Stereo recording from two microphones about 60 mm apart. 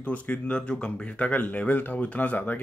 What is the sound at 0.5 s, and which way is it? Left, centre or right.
Speech, centre.